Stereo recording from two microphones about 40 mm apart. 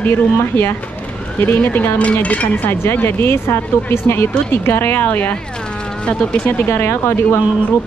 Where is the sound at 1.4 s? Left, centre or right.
Left.